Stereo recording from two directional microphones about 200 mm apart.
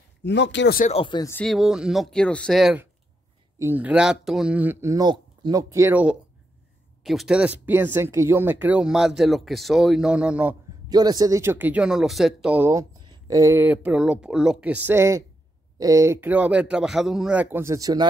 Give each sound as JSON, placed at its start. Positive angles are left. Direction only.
{"t": 0.2, "sound": "speech", "side_deg": 60}
{"t": 0.7, "sound": "speech", "side_deg": 35}
{"t": 1.0, "sound": "speech", "side_deg": 20}
{"t": 1.3, "sound": "speech", "side_deg": 0}
{"t": 10.9, "sound": "speech", "side_deg": -20}